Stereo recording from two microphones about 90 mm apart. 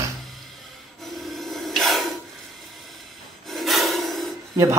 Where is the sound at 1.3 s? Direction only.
Centre (ahead or behind).